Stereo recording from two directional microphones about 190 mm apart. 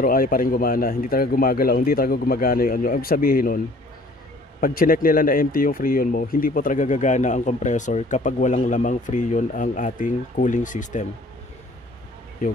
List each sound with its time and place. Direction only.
0.0 s speech: 50° left (ahead or behind)